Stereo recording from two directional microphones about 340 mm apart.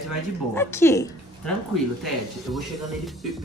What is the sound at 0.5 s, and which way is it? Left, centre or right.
Speech, centre.